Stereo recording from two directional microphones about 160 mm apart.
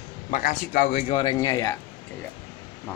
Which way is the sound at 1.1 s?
30° left (ahead or behind).